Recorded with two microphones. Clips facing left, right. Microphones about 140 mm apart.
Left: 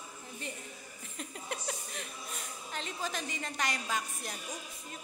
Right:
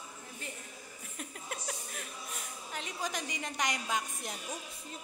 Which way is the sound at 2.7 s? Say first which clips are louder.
Even; 15° right (ahead or behind).